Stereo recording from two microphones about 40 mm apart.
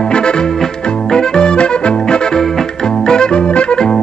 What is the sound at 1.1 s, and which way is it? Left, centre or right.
Music, centre.